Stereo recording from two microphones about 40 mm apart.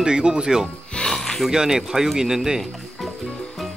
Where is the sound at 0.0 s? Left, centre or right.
Centre.